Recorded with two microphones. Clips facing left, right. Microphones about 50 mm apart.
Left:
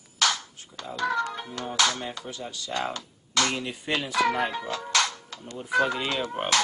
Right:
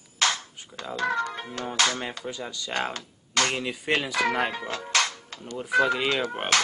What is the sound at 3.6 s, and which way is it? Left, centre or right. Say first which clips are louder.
Speech: right 3 dB; right.